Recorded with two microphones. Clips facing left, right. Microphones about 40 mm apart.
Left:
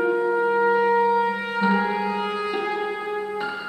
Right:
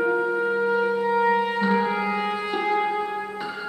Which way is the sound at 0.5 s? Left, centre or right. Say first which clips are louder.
Left 4 dB; centre.